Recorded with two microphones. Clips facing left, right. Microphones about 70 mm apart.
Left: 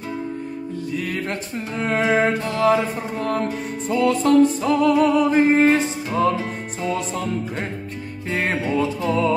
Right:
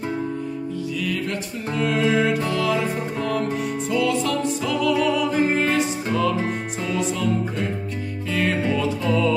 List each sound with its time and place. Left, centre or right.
0.9 s music: left
2.0 s music: left
8.3 s music: left